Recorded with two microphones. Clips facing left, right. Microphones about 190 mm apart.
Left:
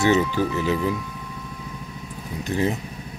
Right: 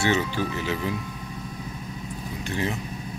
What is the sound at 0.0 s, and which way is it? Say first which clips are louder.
Speech: left 5 dB; 40° left (ahead or behind).